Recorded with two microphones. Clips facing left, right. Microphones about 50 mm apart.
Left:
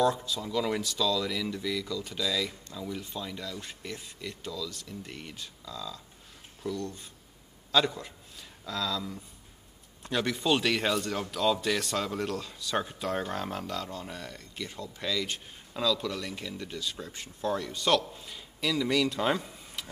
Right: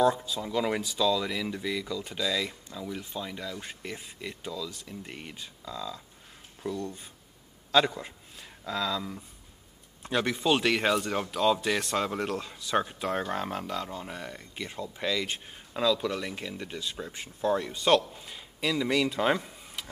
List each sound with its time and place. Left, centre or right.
0.0 s speech: centre